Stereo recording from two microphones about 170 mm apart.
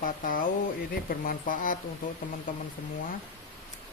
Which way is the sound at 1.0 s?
55° left (ahead or behind).